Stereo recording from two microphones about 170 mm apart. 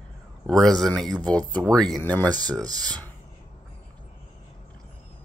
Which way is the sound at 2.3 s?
25° right (ahead or behind).